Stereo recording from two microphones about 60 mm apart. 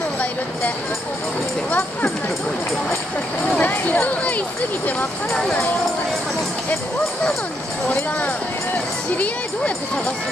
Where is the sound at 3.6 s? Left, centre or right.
Left.